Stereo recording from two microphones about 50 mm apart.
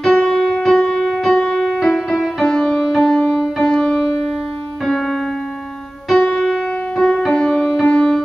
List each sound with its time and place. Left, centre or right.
0.0 s music: centre
0.9 s music: centre
6.0 s music: centre
6.4 s piano: centre
7.2 s music: centre